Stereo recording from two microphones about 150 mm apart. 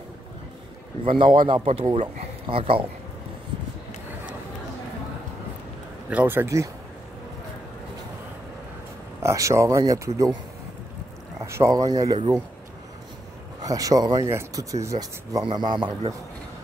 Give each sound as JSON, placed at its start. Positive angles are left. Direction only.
{"t": 1.0, "sound": "speech", "side_deg": -35}
{"t": 6.0, "sound": "speech", "side_deg": -10}
{"t": 9.2, "sound": "speech", "side_deg": -20}
{"t": 11.4, "sound": "speech", "side_deg": -20}
{"t": 13.6, "sound": "speech", "side_deg": -25}